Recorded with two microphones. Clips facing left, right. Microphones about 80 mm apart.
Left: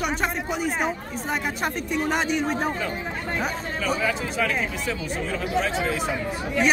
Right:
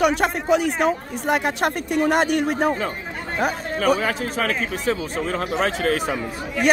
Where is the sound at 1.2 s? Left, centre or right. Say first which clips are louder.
Right 6 dB; right.